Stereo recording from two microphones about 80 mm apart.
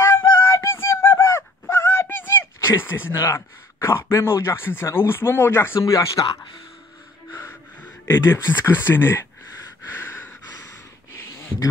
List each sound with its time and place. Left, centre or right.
0.0 s a sound: left
2.7 s speech: left
5.8 s speech: left
8.0 s speech: left
9.8 s breathing: left